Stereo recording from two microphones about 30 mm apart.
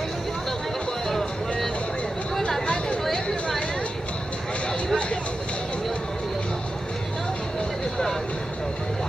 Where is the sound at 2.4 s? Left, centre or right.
Left.